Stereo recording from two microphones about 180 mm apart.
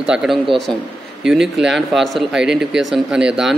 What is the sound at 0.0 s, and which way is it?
A man's voice, 5° right (ahead or behind).